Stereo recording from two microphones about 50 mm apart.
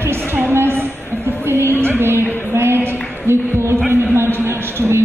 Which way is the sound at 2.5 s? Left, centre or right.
Right.